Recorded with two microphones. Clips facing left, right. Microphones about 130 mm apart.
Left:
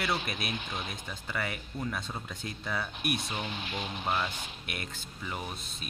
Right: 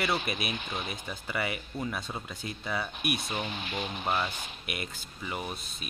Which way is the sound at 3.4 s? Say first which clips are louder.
Right 2 dB; 60° right (ahead or behind).